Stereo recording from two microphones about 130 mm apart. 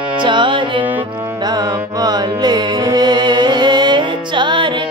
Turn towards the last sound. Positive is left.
turn(degrees=-40)  # may be behind; listen again after turning